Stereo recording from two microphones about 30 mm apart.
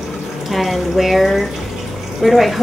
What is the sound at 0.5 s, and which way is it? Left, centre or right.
A woman's voice, centre.